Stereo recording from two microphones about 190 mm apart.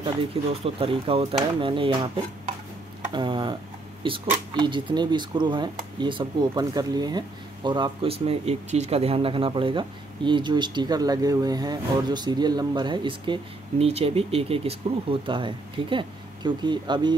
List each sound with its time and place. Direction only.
0.0 s speech: 30° right (ahead or behind)